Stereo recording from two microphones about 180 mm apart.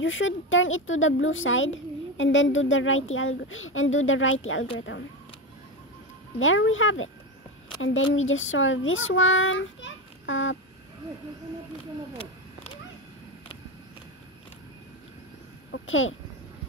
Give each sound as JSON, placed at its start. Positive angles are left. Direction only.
{"t": 0.0, "sound": "speech", "side_deg": 90}
{"t": 6.4, "sound": "speech", "side_deg": 90}
{"t": 15.7, "sound": "a child's voice", "side_deg": 90}